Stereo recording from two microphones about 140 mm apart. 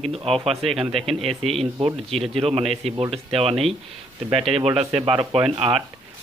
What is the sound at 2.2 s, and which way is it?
Speech, 45° right (ahead or behind).